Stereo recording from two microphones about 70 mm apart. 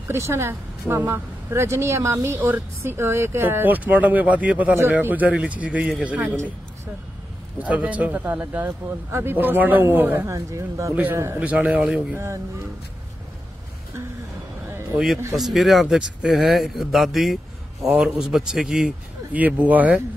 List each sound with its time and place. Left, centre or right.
0.1 s speech: right
7.5 s speech: right
10.2 s speech: right
11.3 s speech: centre
15.3 s speech: centre
16.2 s a man's voice: centre
16.4 s a man's voice: centre
19.3 s speech: right